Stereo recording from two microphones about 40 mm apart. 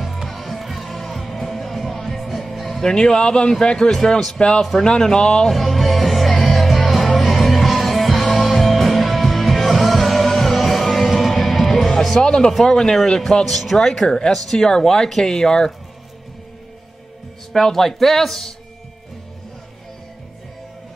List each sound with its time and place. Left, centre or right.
0.0 s music: centre
2.8 s speech: centre
5.5 s music: centre
12.2 s speech: centre
14.0 s speech: left
14.3 s speech: centre
17.5 s speech: centre